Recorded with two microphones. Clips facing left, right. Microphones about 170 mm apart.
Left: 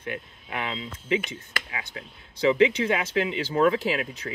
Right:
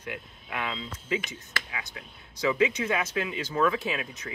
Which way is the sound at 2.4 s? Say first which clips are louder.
Left 5 dB; 30° left (ahead or behind).